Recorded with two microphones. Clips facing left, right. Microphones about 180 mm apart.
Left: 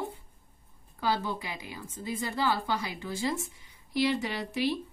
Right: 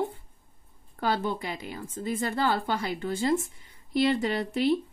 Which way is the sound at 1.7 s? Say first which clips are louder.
Right 4 dB; 55° right (ahead or behind).